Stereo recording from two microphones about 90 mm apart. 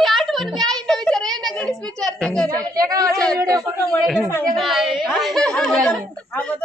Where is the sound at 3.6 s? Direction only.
Centre (ahead or behind).